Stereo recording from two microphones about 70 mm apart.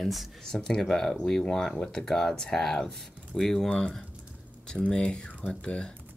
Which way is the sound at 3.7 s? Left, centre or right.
Centre.